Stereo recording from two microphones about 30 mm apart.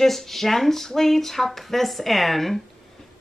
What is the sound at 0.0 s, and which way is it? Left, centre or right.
A woman's voice, centre.